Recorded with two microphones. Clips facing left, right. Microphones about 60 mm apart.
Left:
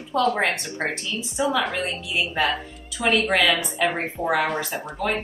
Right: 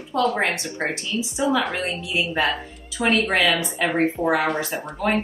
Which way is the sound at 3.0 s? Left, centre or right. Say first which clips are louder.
Right 1 dB; right.